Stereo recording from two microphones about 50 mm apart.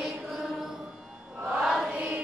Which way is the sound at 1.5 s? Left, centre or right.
Centre.